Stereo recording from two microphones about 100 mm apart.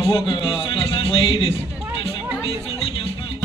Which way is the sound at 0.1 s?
55° left (ahead or behind).